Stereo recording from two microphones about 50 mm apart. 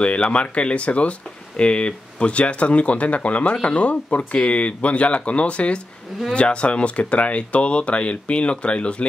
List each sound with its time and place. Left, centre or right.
0.0 s speech: left